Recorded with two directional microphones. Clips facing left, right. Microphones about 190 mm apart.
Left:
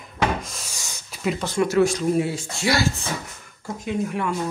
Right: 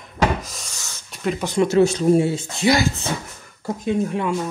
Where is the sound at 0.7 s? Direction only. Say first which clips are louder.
Left 1 dB; 15° left (ahead or behind).